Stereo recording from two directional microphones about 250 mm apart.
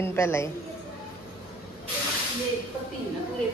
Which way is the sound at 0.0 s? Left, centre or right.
Centre.